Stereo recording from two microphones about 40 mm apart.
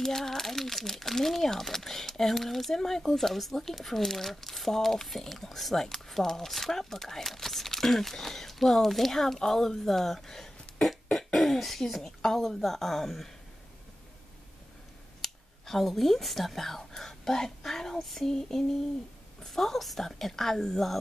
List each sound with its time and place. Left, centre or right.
0.0 s speech: centre
15.2 s speech: centre